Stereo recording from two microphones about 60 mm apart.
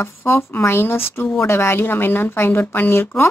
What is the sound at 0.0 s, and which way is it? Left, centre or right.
Speech, left.